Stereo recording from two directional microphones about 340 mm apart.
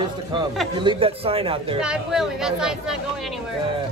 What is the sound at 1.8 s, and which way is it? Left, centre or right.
Speech, centre.